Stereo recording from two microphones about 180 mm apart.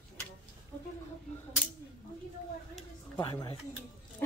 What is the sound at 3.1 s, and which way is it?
Speech, 25° left (ahead or behind).